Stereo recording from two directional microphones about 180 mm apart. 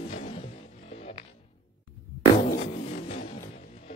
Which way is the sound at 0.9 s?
40° left (ahead or behind).